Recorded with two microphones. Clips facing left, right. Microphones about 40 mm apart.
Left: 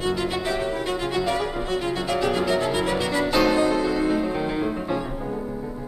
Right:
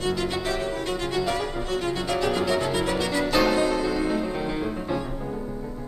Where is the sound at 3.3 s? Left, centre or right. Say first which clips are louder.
Left 2 dB; centre.